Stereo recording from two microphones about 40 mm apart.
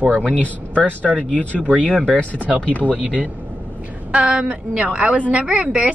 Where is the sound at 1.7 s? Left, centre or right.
Right.